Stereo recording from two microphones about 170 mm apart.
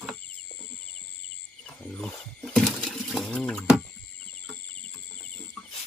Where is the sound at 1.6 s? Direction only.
5° left (ahead or behind).